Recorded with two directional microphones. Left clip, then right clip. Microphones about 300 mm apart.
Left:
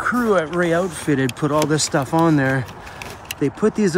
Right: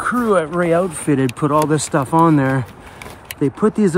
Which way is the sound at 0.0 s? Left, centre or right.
Right.